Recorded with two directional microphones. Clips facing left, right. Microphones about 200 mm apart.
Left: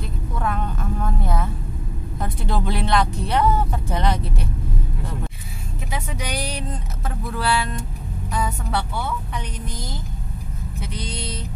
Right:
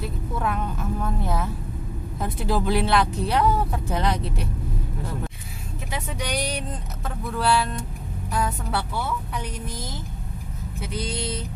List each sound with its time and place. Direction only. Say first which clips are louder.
0.0 s vehicle: even; 5° right (ahead or behind)
2.1 s speech: right 1 dB; centre (ahead or behind)
5.9 s speech: even; 5° left (ahead or behind)